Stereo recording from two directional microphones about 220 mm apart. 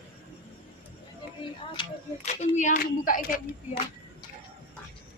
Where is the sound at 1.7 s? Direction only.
30° left (ahead or behind).